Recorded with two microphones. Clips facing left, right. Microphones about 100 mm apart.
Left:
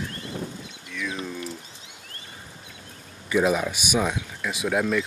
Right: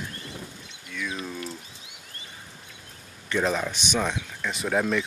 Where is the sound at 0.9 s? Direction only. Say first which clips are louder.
Left 1 dB; centre (ahead or behind).